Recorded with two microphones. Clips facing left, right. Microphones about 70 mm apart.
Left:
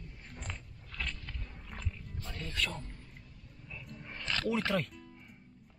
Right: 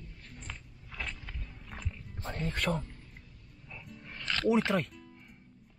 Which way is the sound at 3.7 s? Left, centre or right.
Centre.